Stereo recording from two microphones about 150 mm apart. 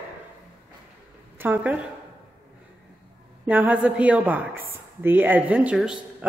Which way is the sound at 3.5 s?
10° right (ahead or behind).